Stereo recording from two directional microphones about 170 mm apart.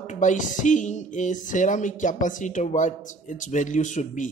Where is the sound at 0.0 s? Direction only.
45° left (ahead or behind).